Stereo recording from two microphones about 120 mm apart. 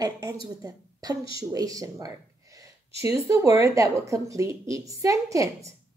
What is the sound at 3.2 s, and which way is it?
A woman's voice, 25° right (ahead or behind).